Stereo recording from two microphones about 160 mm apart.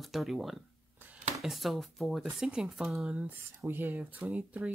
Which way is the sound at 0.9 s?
10° right (ahead or behind).